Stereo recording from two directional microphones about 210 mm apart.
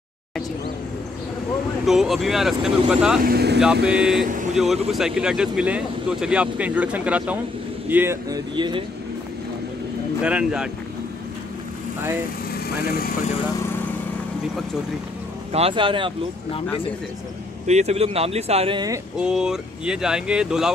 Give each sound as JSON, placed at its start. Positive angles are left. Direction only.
{"t": 1.9, "sound": "speech", "side_deg": 0}
{"t": 3.2, "sound": "speech", "side_deg": -45}
{"t": 3.6, "sound": "speech", "side_deg": -5}
{"t": 10.2, "sound": "speech", "side_deg": -5}
{"t": 12.5, "sound": "speech", "side_deg": 45}
{"t": 15.5, "sound": "speech", "side_deg": -25}
{"t": 17.6, "sound": "speech", "side_deg": -30}
{"t": 19.1, "sound": "speech", "side_deg": -5}